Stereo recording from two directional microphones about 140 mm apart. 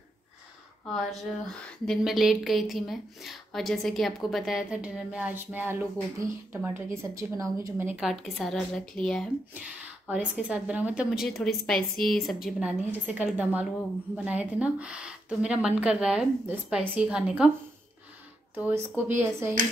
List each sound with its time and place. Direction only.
0.9 s a woman's voice: centre (ahead or behind); by 7.9 s 20° right (ahead or behind)
7.9 s a woman's voice: centre (ahead or behind)
9.5 s a woman's voice: 10° right (ahead or behind)
18.5 s a woman's voice: 15° right (ahead or behind)